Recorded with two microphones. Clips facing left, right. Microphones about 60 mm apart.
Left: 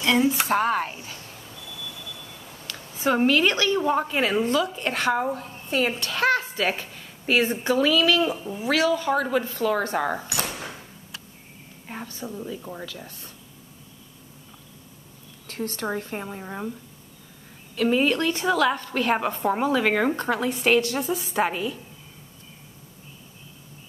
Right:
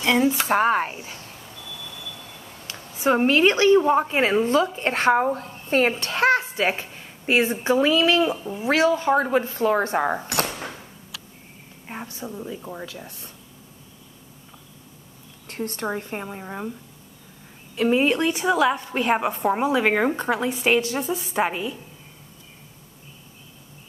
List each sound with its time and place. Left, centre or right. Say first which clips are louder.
0.0 s a woman's voice: right 1 dB; right
2.7 s a woman's voice: right 3 dB; right
11.9 s a woman's voice: right 1 dB; centre
15.4 s a woman's voice: right 1 dB; right
16.2 s a woman's voice: right 1 dB; centre
17.8 s a woman's voice: right 2 dB; right; by 21.5 s centre
21.5 s a woman's voice: even; centre